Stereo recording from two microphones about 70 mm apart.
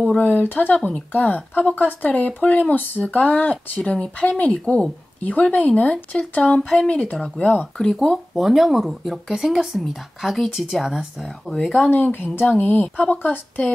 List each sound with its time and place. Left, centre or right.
0.1 s speech: left
7.7 s speech: centre
11.2 s speech: centre
11.9 s speech: left